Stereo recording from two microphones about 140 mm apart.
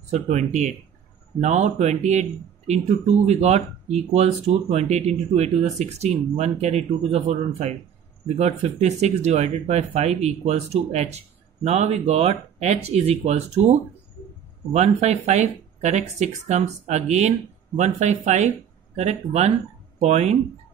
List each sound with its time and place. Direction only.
0.1 s speech: 55° right (ahead or behind)